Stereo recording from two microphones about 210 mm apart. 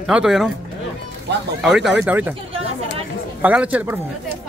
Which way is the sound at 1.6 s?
Centre (ahead or behind).